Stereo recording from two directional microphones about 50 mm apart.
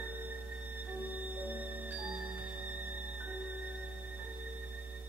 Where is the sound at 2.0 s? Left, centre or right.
Centre.